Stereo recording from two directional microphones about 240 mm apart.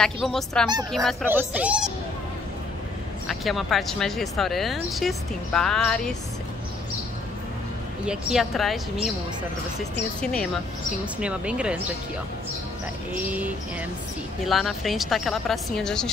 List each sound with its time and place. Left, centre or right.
0.0 s speech: centre
3.3 s speech: centre
8.1 s speech: centre
11.1 s speech: centre
14.4 s speech: centre